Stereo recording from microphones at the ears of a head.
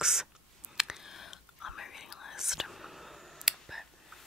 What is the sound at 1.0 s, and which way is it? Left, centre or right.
Whispering, left.